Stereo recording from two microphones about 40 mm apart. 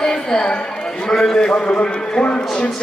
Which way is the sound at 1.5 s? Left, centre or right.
Left.